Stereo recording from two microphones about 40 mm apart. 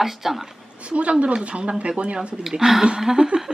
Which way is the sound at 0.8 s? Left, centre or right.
Right.